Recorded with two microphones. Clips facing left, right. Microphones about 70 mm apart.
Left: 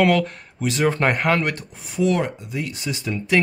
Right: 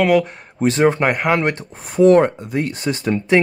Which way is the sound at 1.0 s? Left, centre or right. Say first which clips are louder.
Right 2 dB; centre.